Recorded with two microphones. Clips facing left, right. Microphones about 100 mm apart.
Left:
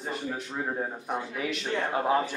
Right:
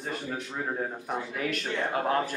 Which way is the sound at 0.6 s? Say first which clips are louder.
Left 1 dB; 10° left (ahead or behind).